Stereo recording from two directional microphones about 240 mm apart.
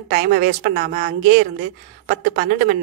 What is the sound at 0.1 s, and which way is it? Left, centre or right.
A woman's voice, right.